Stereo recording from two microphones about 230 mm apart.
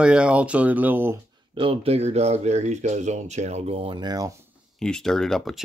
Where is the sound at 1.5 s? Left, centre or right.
Right.